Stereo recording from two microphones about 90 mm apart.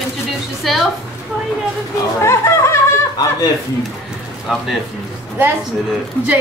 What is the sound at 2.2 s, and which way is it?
Speech, 35° left (ahead or behind).